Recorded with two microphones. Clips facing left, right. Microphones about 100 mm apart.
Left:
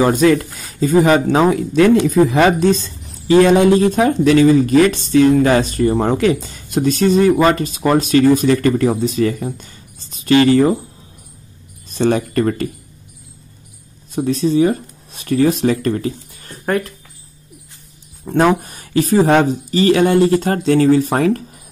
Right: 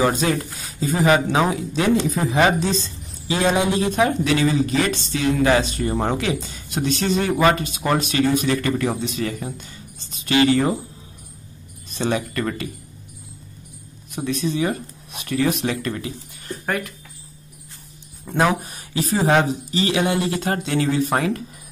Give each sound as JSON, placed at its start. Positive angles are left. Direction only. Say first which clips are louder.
{"t": 0.1, "sound": "speech", "louder": "left 9 dB", "side_deg": 50}
{"t": 1.5, "sound": "speech", "louder": "left 8 dB", "side_deg": 55}
{"t": 11.9, "sound": "speech", "louder": "left 7 dB", "side_deg": 45}
{"t": 14.1, "sound": "speech", "louder": "left 8 dB", "side_deg": 35}
{"t": 18.3, "sound": "speech", "louder": "left 7 dB", "side_deg": 35}
{"t": 18.6, "sound": "speech", "louder": "left 8 dB", "side_deg": 50}